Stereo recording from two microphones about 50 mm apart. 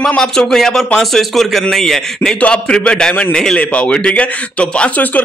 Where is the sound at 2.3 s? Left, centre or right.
Left.